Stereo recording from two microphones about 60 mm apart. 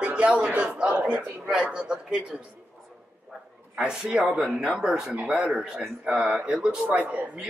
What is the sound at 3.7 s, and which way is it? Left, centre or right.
A man's voice, centre.